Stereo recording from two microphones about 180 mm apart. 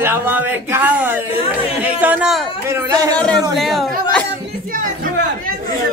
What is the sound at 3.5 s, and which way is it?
Speech, centre (ahead or behind).